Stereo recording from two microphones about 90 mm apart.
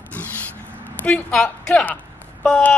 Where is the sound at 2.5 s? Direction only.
20° left (ahead or behind).